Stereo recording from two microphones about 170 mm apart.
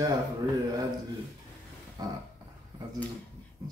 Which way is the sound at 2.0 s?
20° right (ahead or behind).